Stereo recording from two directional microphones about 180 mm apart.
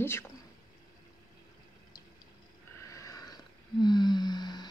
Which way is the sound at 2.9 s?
20° left (ahead or behind).